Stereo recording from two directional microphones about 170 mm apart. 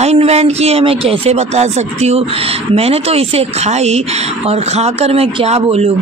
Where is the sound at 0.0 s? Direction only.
40° right (ahead or behind).